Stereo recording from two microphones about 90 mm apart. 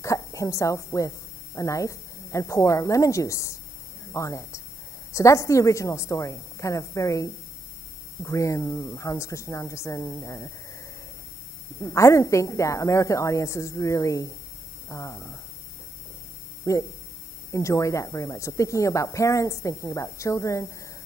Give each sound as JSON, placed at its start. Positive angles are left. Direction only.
{"t": 0.0, "sound": "a woman's voice", "side_deg": 35}
{"t": 11.8, "sound": "speech", "side_deg": 35}
{"t": 16.6, "sound": "speech", "side_deg": 35}